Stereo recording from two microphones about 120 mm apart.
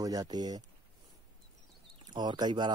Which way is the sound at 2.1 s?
35° right (ahead or behind).